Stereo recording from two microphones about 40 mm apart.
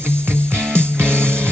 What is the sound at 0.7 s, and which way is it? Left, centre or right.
Music, left.